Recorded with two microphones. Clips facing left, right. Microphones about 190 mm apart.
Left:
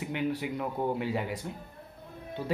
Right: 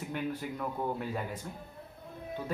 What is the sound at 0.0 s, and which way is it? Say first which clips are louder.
Speech: left 4 dB; 75° left (ahead or behind).